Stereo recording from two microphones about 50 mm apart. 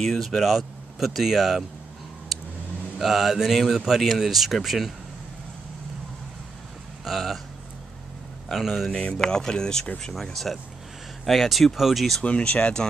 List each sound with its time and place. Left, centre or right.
0.0 s speech: centre
0.3 s speech: centre
3.0 s speech: centre
7.1 s speech: centre
8.5 s speech: centre
9.2 s speech: centre
10.3 s speech: centre
12.2 s speech: left